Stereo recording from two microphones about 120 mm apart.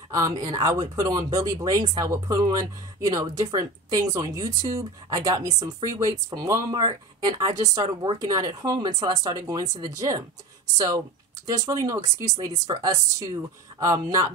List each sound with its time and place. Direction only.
0.1 s speech: 30° right (ahead or behind)
11.4 s speech: 30° right (ahead or behind)